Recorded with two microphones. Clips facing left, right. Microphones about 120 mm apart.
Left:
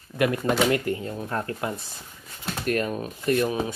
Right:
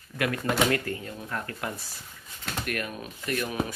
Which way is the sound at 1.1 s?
35° left (ahead or behind).